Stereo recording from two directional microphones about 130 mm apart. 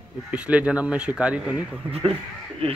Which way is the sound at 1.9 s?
50° right (ahead or behind).